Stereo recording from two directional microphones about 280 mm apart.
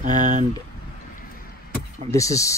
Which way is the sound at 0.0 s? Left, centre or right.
Right.